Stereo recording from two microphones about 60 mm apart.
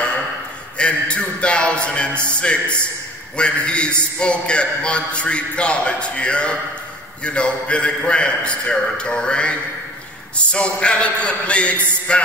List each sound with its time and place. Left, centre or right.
0.7 s music: centre
3.3 s a man's voice: centre